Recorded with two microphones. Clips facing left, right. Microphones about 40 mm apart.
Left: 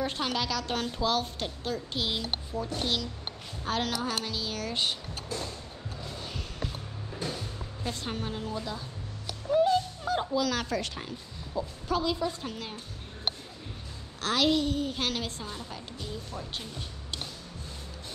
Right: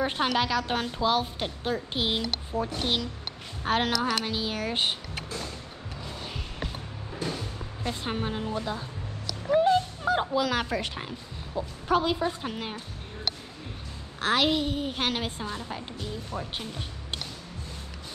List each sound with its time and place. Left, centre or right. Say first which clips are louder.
0.0 s a woman's voice: right 5 dB; right
7.2 s music: right 3 dB; right
10.2 s a woman's voice: right 2 dB; right
11.5 s a woman's voice: right 5 dB; right
14.2 s a woman's voice: right 1 dB; right